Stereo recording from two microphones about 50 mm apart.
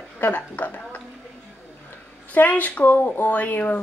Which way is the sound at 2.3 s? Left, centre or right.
Left.